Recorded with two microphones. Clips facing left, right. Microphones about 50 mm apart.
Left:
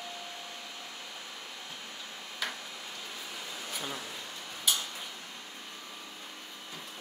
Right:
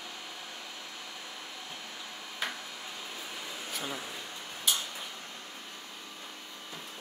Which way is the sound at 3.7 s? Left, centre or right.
Centre.